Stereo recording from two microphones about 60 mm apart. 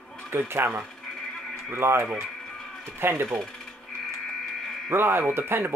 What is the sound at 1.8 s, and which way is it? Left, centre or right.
Speech, right.